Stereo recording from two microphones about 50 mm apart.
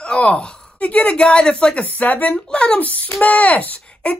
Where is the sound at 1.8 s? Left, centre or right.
Left.